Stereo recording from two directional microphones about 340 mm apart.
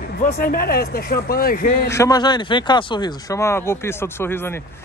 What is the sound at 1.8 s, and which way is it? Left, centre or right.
Speech, centre.